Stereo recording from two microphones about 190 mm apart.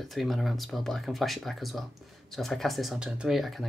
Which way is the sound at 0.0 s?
Centre (ahead or behind).